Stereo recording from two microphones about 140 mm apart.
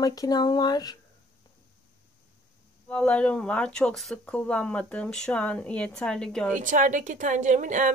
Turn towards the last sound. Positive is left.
turn(degrees=-65)  # may be behind; listen again after turning